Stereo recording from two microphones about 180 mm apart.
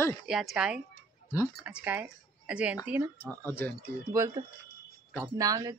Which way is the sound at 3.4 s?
10° left (ahead or behind).